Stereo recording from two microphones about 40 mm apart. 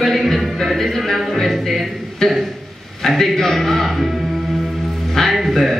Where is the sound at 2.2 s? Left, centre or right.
Centre.